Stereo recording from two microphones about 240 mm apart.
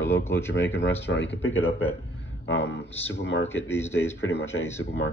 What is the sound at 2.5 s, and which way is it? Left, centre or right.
Speech, left.